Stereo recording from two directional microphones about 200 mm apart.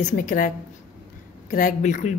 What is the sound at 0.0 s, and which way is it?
Speech, 40° left (ahead or behind).